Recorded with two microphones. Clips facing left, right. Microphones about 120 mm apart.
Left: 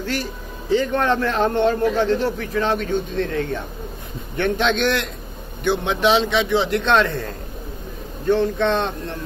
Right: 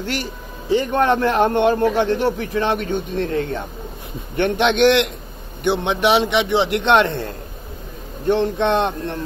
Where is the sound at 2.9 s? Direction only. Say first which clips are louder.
Even; 15° right (ahead or behind).